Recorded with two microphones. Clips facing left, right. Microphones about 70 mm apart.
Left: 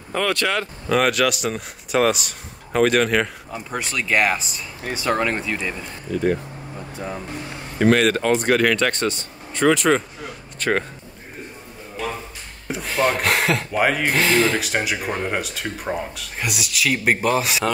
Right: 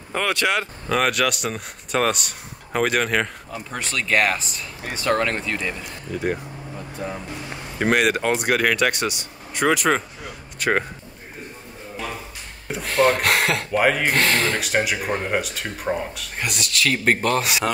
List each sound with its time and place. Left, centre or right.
0.1 s speech: centre
0.8 s speech: centre
7.8 s speech: centre
12.6 s speech: centre